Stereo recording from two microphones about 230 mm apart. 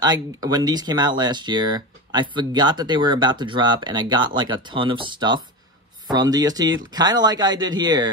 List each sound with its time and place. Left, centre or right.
0.0 s speech: centre